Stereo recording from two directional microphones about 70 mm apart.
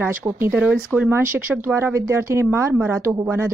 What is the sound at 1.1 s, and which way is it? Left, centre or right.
A woman's voice, right.